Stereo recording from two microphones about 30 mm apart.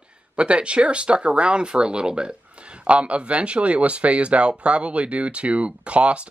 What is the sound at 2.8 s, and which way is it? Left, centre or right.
Speech, right.